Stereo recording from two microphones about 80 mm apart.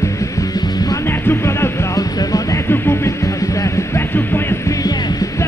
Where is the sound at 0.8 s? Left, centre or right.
Left.